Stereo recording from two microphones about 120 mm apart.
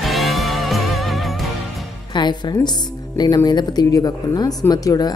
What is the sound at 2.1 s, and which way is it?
Speech, 40° left (ahead or behind).